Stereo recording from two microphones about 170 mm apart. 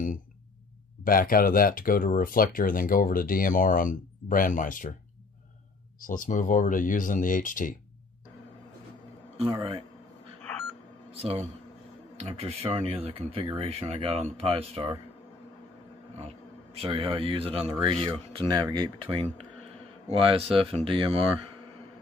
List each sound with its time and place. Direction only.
1.0 s speech: 55° left (ahead or behind)
5.9 s speech: 50° left (ahead or behind)
9.4 s speech: 30° right (ahead or behind)
11.1 s speech: 35° right (ahead or behind)
16.8 s speech: 30° right (ahead or behind)